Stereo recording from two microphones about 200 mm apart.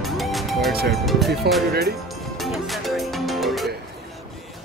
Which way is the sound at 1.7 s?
50° right (ahead or behind).